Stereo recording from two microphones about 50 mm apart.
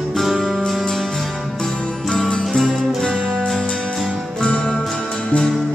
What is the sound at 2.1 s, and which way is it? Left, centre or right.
Music, centre.